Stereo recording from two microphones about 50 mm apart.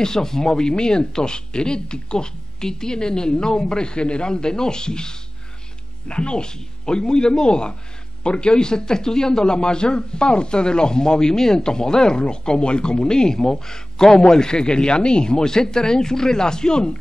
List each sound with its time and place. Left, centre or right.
0.0 s a man's voice: centre